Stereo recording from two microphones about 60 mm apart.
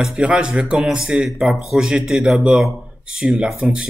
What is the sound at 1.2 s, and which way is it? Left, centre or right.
A man's voice, centre.